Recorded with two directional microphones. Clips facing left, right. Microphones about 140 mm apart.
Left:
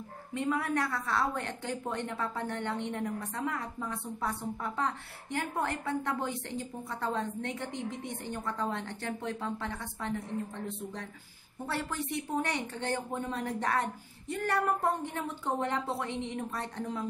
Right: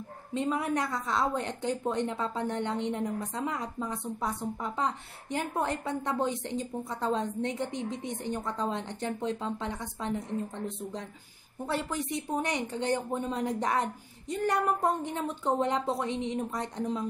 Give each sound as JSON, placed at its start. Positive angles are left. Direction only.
{"t": 0.3, "sound": "a woman's voice", "side_deg": -20}
{"t": 11.6, "sound": "a woman's voice", "side_deg": -15}